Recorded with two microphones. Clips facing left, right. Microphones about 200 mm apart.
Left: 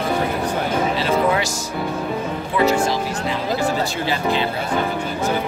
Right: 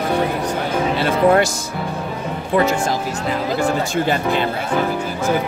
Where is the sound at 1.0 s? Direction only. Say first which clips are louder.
Right 7 dB; 55° right (ahead or behind).